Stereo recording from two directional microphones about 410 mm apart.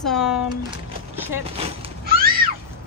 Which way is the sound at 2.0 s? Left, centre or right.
Right.